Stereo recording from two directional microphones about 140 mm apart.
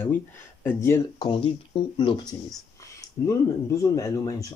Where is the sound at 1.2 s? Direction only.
40° left (ahead or behind).